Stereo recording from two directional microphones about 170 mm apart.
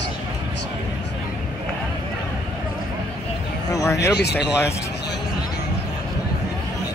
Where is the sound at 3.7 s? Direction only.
20° left (ahead or behind).